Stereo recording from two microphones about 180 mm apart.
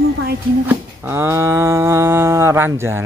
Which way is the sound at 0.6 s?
10° right (ahead or behind).